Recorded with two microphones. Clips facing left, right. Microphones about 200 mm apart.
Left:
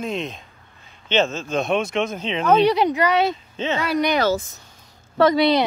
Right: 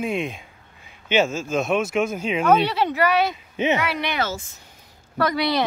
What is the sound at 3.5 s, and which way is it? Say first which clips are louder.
Speech: right 3 dB; 15° right (ahead or behind).